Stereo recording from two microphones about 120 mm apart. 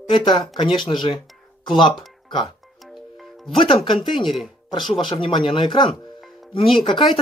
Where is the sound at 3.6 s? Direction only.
45° left (ahead or behind).